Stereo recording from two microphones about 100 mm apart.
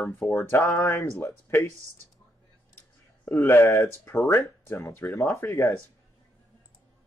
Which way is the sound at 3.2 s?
25° left (ahead or behind).